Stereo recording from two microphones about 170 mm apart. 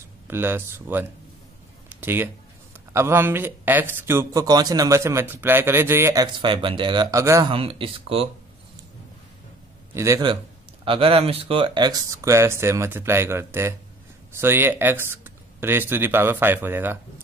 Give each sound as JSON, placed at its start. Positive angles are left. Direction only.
{"t": 0.3, "sound": "speech", "side_deg": -15}
{"t": 6.2, "sound": "speech", "side_deg": -30}
{"t": 7.5, "sound": "speech", "side_deg": -35}
{"t": 9.9, "sound": "speech", "side_deg": -15}
{"t": 10.9, "sound": "speech", "side_deg": -35}